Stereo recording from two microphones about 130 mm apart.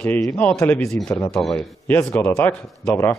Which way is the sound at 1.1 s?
20° left (ahead or behind).